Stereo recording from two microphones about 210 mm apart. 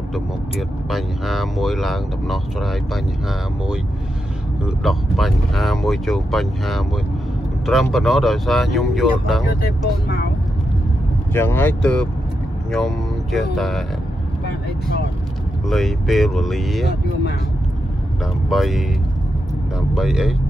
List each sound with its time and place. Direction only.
0.1 s speech: centre (ahead or behind)
4.6 s speech: centre (ahead or behind)
9.6 s speech: 50° left (ahead or behind)
11.3 s speech: 10° left (ahead or behind)
15.7 s speech: centre (ahead or behind)
18.2 s speech: centre (ahead or behind)
19.9 s speech: 5° right (ahead or behind)